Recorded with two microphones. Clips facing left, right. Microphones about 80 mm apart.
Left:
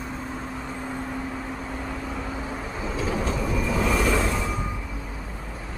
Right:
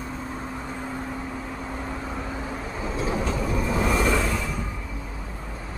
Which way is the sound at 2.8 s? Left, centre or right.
Right.